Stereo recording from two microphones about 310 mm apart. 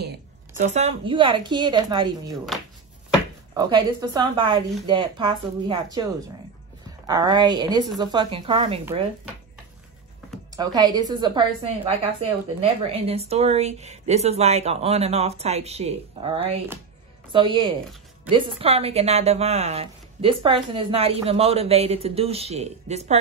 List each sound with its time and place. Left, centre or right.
0.6 s a woman's voice: right
3.5 s a woman's voice: centre
7.1 s a woman's voice: centre
10.5 s a woman's voice: centre